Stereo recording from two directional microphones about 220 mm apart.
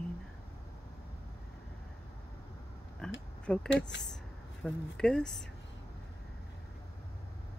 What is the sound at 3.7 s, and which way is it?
Speech, 55° left (ahead or behind).